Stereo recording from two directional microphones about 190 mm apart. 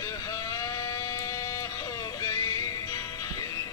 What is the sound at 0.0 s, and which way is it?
Music, 15° left (ahead or behind).